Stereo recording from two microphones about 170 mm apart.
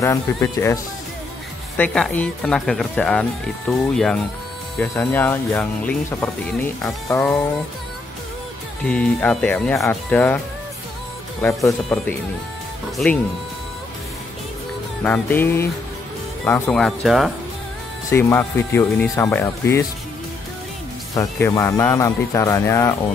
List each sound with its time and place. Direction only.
0.0 s speech: 15° left (ahead or behind)
1.8 s speech: 10° left (ahead or behind)
8.8 s speech: 5° left (ahead or behind)
11.9 s speech: 10° left (ahead or behind)
15.0 s speech: 10° left (ahead or behind)
16.7 s speech: centre (ahead or behind)
18.1 s speech: 15° left (ahead or behind)
21.1 s speech: 20° left (ahead or behind)